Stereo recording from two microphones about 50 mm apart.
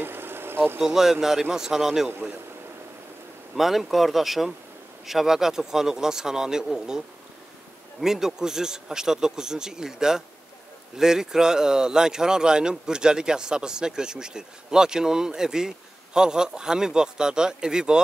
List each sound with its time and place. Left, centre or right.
0.0 s a sound: right
0.7 s speech: centre
3.5 s speech: centre
8.0 s speech: centre